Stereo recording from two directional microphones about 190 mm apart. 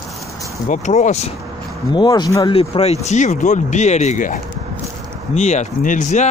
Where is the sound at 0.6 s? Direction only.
40° left (ahead or behind).